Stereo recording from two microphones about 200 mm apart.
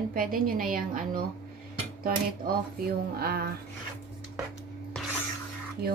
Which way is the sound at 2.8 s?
50° right (ahead or behind).